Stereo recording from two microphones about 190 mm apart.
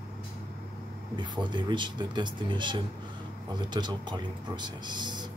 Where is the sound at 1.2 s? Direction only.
25° right (ahead or behind).